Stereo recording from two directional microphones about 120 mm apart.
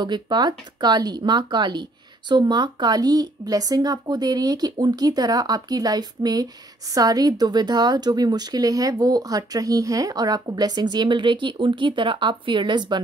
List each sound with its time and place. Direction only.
0.0 s speech: 35° right (ahead or behind)